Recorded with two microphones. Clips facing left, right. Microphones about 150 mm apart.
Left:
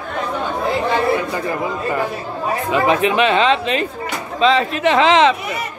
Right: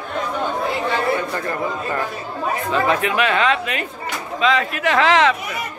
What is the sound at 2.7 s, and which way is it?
Speech, 20° left (ahead or behind).